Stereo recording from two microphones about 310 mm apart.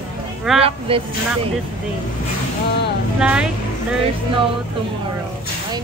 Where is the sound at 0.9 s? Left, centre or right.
Centre.